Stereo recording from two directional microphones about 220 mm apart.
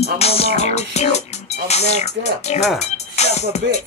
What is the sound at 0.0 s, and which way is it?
Speech, 30° left (ahead or behind).